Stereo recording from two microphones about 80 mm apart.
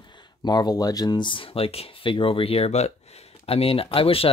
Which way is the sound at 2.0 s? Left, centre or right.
Left.